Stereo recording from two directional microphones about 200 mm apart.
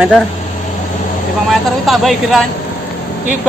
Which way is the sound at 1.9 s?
Centre (ahead or behind).